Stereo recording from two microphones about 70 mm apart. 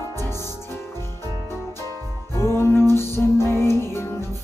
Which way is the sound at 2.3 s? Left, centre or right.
Left.